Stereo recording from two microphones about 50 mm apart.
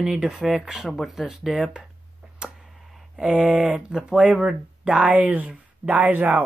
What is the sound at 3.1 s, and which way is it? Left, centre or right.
Speech, centre.